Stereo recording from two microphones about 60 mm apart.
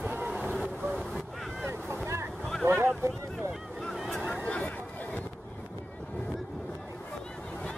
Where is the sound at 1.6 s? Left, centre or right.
Right.